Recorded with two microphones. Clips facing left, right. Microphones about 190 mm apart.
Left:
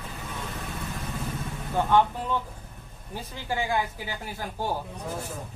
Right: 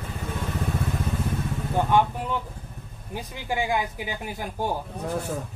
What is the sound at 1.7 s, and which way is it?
A man's voice, 15° right (ahead or behind).